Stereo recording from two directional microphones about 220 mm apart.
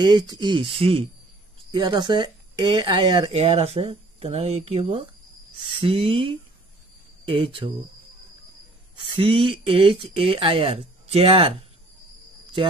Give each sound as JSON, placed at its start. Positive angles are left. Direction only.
{"t": 0.0, "sound": "speech", "side_deg": -20}
{"t": 9.2, "sound": "speech", "side_deg": -25}